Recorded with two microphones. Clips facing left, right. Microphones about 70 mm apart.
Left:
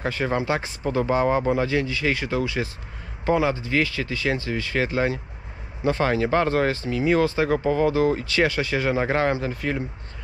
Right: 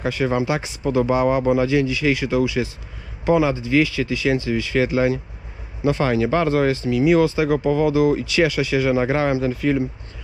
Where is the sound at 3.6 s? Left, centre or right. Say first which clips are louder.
Right 5 dB; left.